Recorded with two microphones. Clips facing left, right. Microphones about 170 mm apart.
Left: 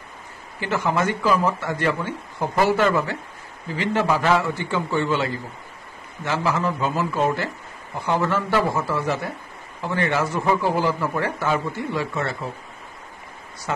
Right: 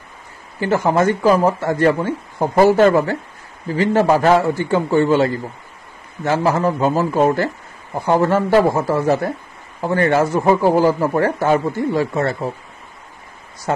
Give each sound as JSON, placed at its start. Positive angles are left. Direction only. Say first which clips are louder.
{"t": 0.6, "sound": "a man's voice", "louder": "right 7 dB", "side_deg": -40}
{"t": 13.7, "sound": "a man's voice", "louder": "right 7 dB", "side_deg": -45}